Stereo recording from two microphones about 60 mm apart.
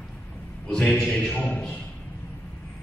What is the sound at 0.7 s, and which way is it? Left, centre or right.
Speech, centre.